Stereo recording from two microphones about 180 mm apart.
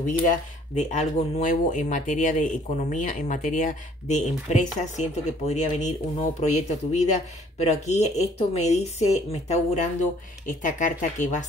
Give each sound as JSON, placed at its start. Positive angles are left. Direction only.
{"t": 0.0, "sound": "speech", "side_deg": 45}